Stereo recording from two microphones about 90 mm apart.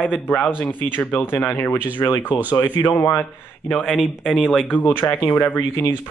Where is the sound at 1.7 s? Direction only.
15° right (ahead or behind).